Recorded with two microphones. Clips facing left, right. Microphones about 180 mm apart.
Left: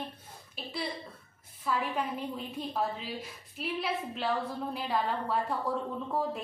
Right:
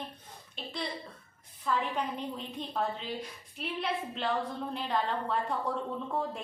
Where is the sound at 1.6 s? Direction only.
5° left (ahead or behind).